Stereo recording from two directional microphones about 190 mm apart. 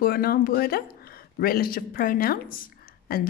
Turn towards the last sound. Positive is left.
turn(degrees=50)  # may be behind; listen again after turning